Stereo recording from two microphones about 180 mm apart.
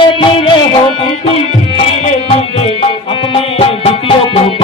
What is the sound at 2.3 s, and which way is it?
Music, 30° left (ahead or behind).